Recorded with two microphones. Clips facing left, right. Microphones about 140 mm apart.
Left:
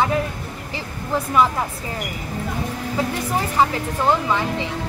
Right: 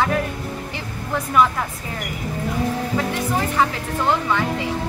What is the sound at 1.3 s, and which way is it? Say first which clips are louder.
Speech: right 1 dB; 25° left (ahead or behind).